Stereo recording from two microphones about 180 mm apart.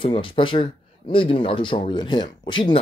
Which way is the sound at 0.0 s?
30° left (ahead or behind).